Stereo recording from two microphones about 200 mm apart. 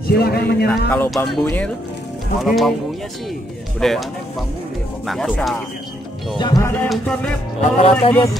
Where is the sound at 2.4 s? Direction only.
Centre (ahead or behind).